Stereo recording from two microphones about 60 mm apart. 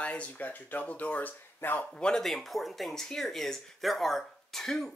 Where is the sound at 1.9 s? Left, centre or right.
Centre.